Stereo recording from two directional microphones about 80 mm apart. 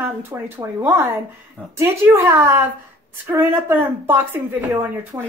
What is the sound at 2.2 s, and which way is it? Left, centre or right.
A woman's voice, right.